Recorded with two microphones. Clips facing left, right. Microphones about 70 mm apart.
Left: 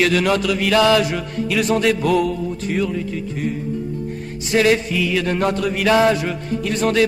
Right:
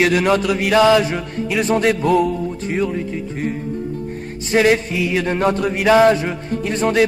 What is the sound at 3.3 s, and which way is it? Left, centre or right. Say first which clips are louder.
Music: even; right.